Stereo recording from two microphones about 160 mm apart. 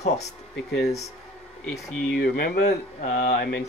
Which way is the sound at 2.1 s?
65° left (ahead or behind).